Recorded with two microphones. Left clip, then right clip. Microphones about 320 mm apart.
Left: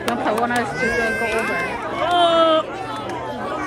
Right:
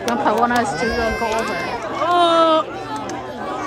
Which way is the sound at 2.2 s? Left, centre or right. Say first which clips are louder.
Right 1 dB; centre.